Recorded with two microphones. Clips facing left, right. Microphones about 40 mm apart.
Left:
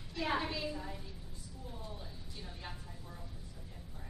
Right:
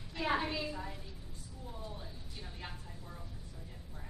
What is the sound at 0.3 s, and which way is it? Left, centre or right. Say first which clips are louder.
Speech: right 2 dB; centre.